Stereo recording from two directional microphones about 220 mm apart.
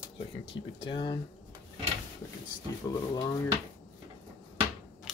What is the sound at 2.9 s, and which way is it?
Speech, 15° left (ahead or behind).